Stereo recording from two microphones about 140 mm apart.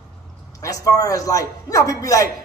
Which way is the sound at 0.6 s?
25° left (ahead or behind).